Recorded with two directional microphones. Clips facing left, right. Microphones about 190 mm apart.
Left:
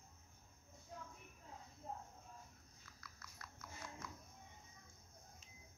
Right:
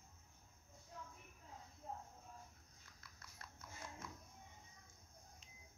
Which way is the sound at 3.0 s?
25° right (ahead or behind).